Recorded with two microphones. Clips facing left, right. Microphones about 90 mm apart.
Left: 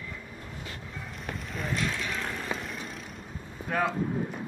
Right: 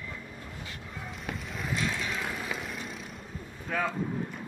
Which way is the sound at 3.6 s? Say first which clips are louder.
Left 3 dB; 10° left (ahead or behind).